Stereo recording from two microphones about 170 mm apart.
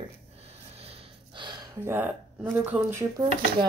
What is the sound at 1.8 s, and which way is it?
Speech, 15° right (ahead or behind).